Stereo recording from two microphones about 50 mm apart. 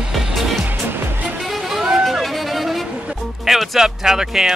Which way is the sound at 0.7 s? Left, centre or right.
Right.